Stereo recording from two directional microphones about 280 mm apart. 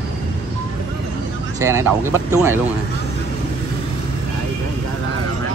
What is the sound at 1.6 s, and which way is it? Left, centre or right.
Speech, centre.